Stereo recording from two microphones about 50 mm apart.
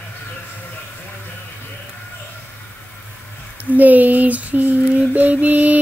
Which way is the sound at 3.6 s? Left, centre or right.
Right.